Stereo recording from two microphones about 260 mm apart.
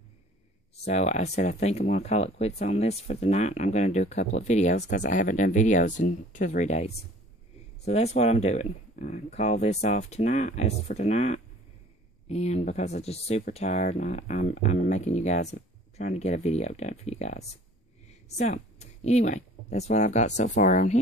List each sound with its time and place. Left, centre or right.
0.7 s speech: left